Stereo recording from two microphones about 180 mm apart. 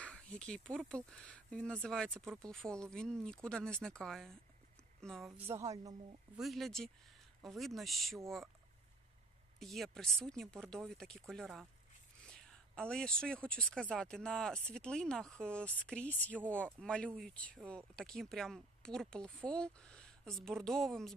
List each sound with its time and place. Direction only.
0.0 s speech: 5° left (ahead or behind)
5.4 s a woman's voice: 15° right (ahead or behind)
6.3 s speech: centre (ahead or behind)
9.6 s speech: centre (ahead or behind)